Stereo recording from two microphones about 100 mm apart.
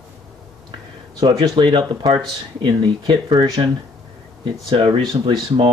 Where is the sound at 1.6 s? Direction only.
55° right (ahead or behind).